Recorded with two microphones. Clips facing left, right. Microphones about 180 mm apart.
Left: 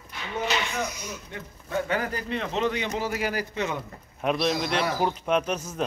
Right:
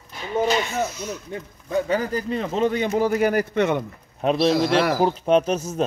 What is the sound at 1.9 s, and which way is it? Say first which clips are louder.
A man's voice: right 5 dB; 40° right (ahead or behind).